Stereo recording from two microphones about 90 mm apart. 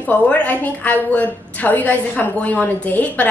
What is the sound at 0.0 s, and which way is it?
A woman's voice, 15° left (ahead or behind).